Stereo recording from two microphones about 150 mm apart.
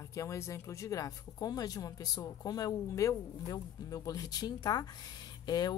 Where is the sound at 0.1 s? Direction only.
20° left (ahead or behind).